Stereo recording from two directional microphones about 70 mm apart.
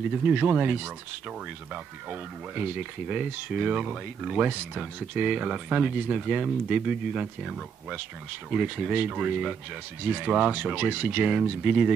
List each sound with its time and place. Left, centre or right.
0.1 s speech: right
2.0 s speech: right; by 4.4 s centre
4.4 s speech: right